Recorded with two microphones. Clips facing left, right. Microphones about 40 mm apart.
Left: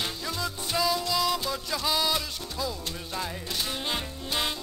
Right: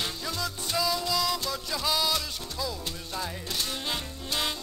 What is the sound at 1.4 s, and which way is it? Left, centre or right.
Music, centre.